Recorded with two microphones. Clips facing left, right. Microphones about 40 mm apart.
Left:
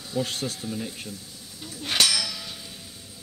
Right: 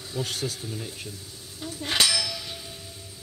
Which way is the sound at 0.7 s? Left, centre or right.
Centre.